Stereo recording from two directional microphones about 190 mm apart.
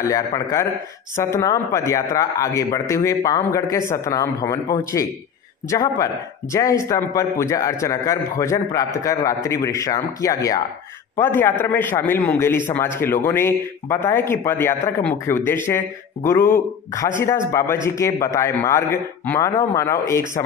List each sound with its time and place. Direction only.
1.1 s a man's voice: 15° left (ahead or behind)